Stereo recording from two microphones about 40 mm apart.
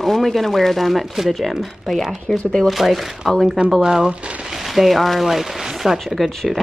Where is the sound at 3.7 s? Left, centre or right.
Centre.